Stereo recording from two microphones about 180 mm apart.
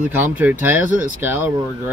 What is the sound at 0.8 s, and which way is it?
Speech, 45° right (ahead or behind).